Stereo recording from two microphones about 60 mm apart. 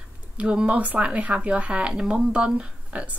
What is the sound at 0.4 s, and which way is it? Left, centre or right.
Speech, centre.